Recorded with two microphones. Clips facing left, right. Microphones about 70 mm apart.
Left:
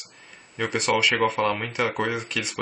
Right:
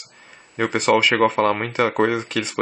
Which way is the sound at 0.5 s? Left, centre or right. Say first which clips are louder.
Right 6 dB; right.